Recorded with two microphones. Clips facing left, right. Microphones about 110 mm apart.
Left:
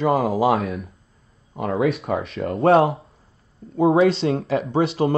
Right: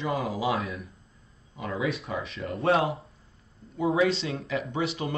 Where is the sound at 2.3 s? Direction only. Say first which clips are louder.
Left 9 dB; 30° left (ahead or behind).